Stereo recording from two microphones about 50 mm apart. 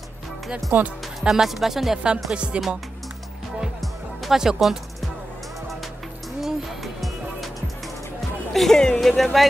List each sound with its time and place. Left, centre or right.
0.7 s speech: right
1.2 s speech: centre
2.3 s speech: right
3.6 s music: centre
4.4 s speech: centre
6.4 s music: centre
8.5 s speech: centre